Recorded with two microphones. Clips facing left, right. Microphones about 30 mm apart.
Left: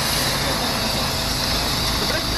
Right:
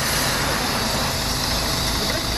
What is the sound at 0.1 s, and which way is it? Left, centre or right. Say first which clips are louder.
Vehicle: even; left.